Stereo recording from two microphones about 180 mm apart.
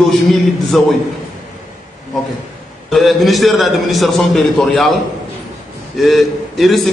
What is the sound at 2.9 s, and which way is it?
A man's voice, centre (ahead or behind).